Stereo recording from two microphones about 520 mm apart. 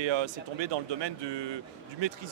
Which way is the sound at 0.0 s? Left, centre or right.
Right.